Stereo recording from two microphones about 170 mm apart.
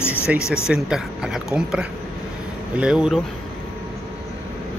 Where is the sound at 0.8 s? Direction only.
5° right (ahead or behind).